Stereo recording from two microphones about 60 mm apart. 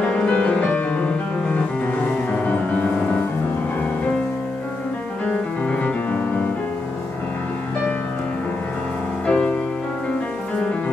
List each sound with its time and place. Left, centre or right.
0.0 s music: centre
5.7 s music: left
9.2 s music: centre